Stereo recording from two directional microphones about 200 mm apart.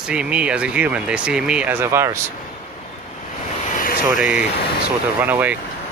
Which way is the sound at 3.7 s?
40° left (ahead or behind).